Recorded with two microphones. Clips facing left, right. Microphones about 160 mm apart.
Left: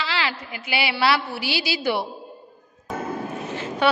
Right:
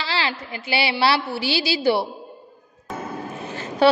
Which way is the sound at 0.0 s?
35° right (ahead or behind).